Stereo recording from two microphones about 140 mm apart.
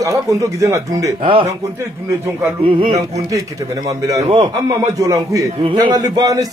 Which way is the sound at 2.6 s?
40° right (ahead or behind).